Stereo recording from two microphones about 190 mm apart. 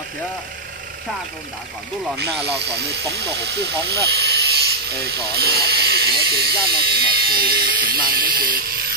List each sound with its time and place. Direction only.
2.1 s speech: 60° right (ahead or behind)